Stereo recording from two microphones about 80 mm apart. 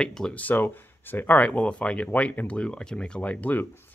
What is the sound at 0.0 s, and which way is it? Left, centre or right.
Speech, centre.